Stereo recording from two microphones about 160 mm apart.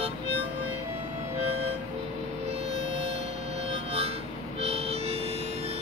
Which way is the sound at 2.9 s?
90° right.